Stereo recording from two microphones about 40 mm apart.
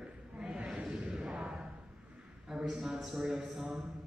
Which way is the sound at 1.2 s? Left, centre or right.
Right.